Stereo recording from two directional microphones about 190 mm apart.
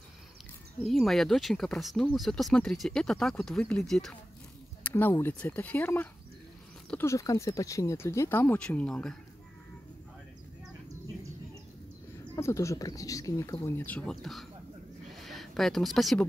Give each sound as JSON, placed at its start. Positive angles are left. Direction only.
{"t": 0.8, "sound": "speech", "side_deg": 0}
{"t": 4.8, "sound": "a sound", "side_deg": 10}
{"t": 5.1, "sound": "speech", "side_deg": 10}
{"t": 12.4, "sound": "speech", "side_deg": 15}